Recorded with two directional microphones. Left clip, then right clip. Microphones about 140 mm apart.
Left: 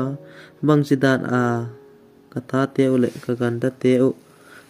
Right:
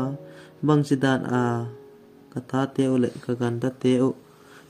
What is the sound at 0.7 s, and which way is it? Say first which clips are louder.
Speech: left 4 dB; 25° left (ahead or behind).